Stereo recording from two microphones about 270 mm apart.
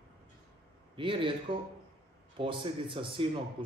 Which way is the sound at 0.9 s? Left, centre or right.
Centre.